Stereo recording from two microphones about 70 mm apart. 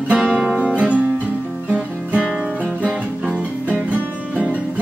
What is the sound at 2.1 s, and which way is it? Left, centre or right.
Music, centre.